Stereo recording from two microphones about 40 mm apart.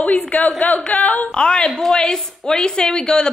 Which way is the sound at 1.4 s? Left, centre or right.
Centre.